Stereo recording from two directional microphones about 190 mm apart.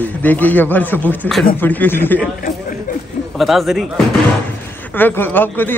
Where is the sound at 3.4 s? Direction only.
Centre (ahead or behind).